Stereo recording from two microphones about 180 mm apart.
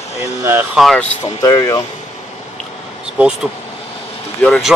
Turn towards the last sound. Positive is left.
turn(degrees=5)  # may be behind; listen again after turning